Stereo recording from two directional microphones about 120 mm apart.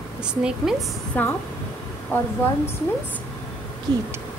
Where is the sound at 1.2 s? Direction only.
15° left (ahead or behind).